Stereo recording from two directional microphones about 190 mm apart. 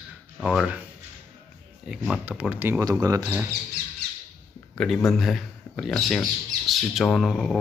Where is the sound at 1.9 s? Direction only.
5° right (ahead or behind).